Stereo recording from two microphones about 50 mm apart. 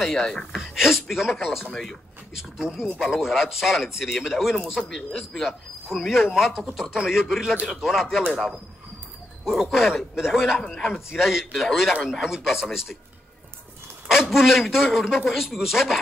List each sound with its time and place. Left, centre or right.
0.0 s speech: centre
0.6 s speech: centre
1.7 s speech: centre
2.3 s speech: centre
4.8 s speech: centre
5.9 s speech: centre
8.3 s speech: centre
14.0 s speech: centre